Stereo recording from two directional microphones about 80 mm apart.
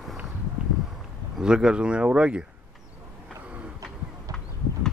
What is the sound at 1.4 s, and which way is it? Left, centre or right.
Speech, centre.